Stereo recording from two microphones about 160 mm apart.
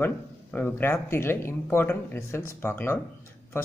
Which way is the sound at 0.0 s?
10° left (ahead or behind).